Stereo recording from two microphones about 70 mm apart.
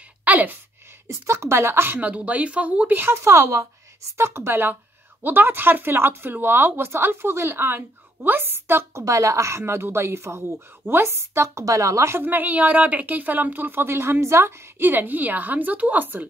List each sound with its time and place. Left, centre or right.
0.2 s speech: right
1.0 s speech: right
2.0 s a woman's voice: right
9.0 s speech: right
12.2 s a woman's voice: right